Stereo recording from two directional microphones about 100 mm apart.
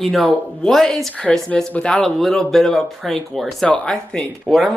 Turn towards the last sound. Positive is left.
turn(degrees=5)  # may be behind; listen again after turning